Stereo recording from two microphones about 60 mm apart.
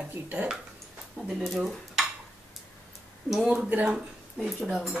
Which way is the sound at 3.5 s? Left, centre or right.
Centre.